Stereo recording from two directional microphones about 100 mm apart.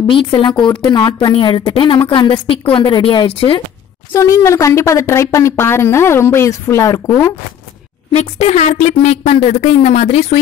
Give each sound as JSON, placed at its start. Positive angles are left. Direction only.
{"t": 0.0, "sound": "a woman's voice", "side_deg": 55}
{"t": 4.1, "sound": "speech", "side_deg": 30}
{"t": 8.1, "sound": "speech", "side_deg": 90}